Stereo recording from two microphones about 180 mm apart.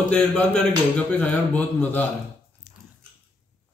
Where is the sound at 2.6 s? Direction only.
5° right (ahead or behind).